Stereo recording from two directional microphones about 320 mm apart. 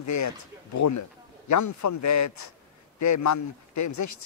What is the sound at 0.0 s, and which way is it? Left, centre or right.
Speech, left.